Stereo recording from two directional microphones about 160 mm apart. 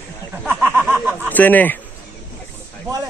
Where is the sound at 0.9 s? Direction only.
10° right (ahead or behind).